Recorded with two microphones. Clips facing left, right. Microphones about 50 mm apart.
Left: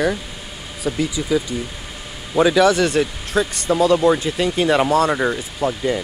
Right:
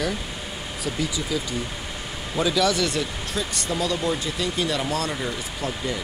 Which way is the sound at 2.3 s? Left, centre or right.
Left.